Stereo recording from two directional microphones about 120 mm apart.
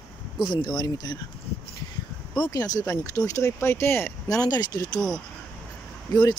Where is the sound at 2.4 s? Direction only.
30° left (ahead or behind).